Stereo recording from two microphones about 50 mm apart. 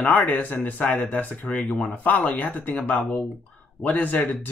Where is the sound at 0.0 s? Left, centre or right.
Left.